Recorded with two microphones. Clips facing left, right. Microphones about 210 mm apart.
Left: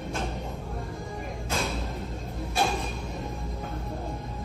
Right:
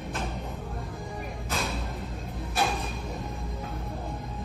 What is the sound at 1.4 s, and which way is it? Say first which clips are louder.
Music: left 2 dB; centre (ahead or behind).